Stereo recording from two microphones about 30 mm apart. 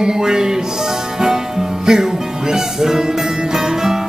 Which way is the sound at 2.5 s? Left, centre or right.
Centre.